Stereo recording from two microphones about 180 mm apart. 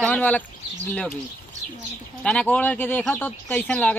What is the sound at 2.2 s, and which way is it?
Speech, 5° left (ahead or behind).